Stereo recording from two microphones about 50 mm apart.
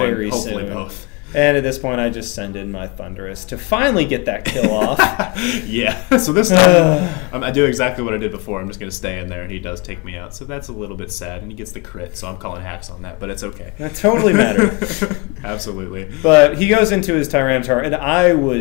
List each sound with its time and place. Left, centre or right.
0.0 s speech: centre